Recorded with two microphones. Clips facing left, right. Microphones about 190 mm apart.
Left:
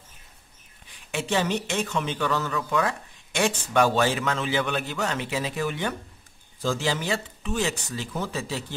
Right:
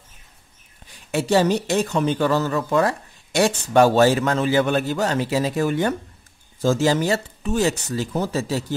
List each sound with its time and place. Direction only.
1.1 s speech: 40° right (ahead or behind)